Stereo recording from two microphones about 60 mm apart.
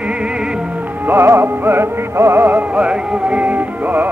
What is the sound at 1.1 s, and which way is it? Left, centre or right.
Music, right.